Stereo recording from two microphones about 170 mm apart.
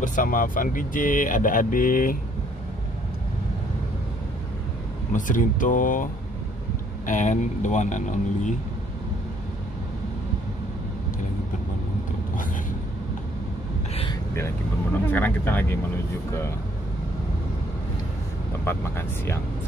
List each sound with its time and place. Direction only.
0.0 s speech: 50° left (ahead or behind)
5.1 s speech: 50° left (ahead or behind)
7.1 s speech: 45° left (ahead or behind)
15.0 s speech: 10° left (ahead or behind)
18.6 s speech: 15° left (ahead or behind)